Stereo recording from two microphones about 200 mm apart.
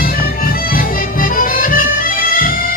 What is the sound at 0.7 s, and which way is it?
Music, 45° left (ahead or behind).